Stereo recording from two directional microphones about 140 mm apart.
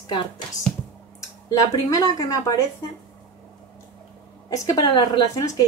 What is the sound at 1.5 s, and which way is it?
A woman's voice, 25° left (ahead or behind).